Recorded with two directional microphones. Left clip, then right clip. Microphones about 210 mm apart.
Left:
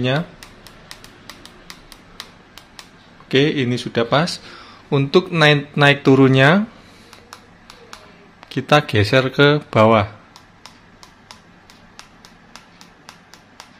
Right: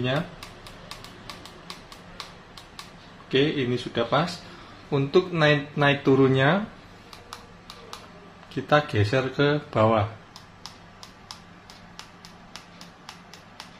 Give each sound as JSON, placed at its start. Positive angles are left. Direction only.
{"t": 3.3, "sound": "speech", "side_deg": 50}
{"t": 8.5, "sound": "speech", "side_deg": 40}